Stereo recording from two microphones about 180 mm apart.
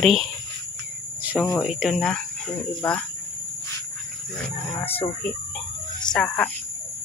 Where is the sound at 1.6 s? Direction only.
Centre (ahead or behind).